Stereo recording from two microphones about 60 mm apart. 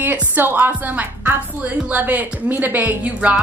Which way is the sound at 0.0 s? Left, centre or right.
Right.